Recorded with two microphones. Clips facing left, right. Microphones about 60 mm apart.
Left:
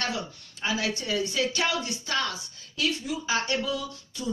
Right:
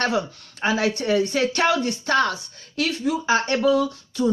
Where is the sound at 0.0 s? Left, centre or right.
Right.